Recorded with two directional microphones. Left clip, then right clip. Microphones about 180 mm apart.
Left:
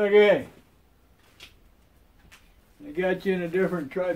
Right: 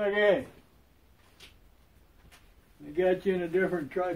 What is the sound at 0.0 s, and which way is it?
Speech, 55° left (ahead or behind).